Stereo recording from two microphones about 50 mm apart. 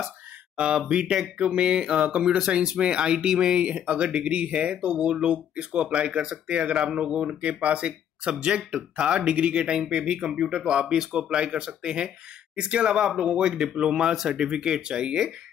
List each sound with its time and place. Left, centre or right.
0.6 s speech: centre